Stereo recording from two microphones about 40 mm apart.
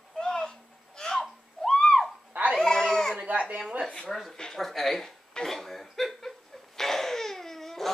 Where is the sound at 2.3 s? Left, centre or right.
Right.